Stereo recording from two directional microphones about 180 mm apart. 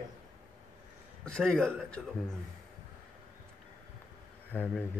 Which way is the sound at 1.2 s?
5° left (ahead or behind).